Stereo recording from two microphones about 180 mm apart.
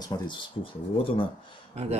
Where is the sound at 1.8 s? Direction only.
35° right (ahead or behind).